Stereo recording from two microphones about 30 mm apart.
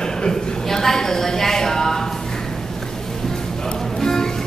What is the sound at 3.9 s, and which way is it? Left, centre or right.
Music, centre.